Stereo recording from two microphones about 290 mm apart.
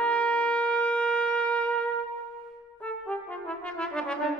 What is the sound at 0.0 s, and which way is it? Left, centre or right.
Shofar, centre.